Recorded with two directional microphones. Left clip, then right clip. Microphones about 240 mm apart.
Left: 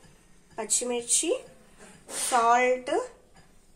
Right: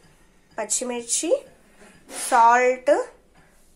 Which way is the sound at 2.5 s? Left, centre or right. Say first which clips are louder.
Right 6 dB; centre.